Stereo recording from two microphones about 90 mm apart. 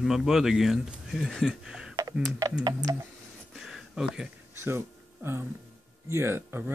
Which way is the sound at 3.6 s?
5° right (ahead or behind).